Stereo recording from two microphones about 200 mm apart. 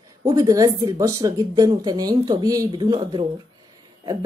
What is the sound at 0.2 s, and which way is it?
A woman's voice, 15° right (ahead or behind).